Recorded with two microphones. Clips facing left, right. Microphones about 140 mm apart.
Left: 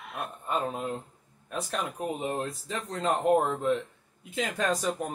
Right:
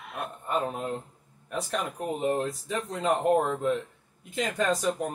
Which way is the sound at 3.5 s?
Centre (ahead or behind).